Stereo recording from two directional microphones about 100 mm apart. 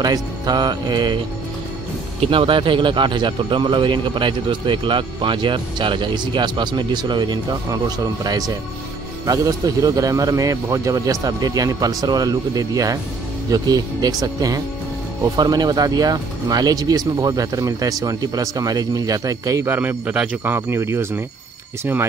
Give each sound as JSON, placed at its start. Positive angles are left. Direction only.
{"t": 0.0, "sound": "a man's voice", "side_deg": -40}
{"t": 2.1, "sound": "a man's voice", "side_deg": -65}
{"t": 19.7, "sound": "speech", "side_deg": -20}